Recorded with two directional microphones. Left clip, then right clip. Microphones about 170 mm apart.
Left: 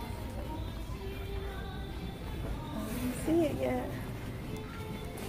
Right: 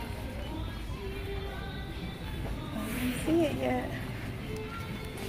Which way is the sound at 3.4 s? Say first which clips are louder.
Right 2 dB; 5° right (ahead or behind).